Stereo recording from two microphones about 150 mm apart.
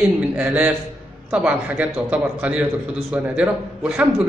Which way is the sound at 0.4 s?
10° right (ahead or behind).